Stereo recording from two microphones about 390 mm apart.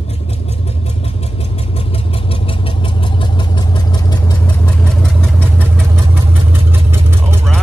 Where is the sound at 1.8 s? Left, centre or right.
Centre.